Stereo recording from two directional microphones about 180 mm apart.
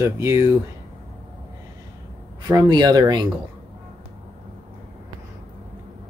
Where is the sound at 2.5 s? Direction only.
20° right (ahead or behind).